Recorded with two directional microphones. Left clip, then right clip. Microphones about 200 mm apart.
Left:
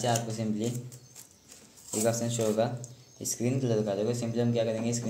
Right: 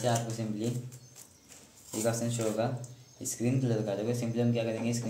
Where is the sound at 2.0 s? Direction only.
35° left (ahead or behind).